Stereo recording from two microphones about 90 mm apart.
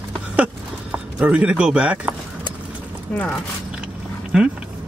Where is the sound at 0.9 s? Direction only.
15° right (ahead or behind).